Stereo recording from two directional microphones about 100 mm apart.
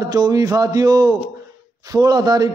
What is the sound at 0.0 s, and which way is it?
A man's voice, 40° right (ahead or behind).